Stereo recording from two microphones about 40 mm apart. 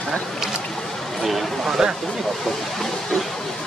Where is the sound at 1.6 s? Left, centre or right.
Centre.